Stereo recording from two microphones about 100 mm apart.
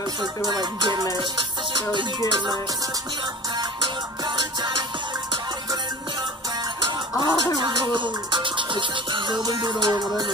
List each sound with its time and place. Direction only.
0.2 s music: 45° right (ahead or behind)
3.5 s music: 45° right (ahead or behind)
6.8 s music: 45° right (ahead or behind)